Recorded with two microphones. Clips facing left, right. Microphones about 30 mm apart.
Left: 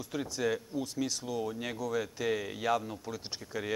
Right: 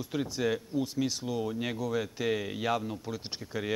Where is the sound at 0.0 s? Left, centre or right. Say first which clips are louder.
Right 2 dB; centre.